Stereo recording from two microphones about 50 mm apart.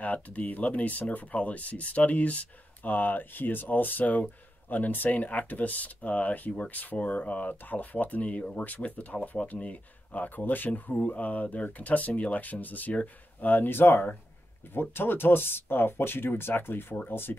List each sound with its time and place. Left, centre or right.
0.0 s speech: left